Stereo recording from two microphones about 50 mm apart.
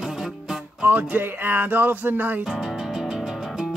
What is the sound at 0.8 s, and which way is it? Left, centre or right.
Speech, right.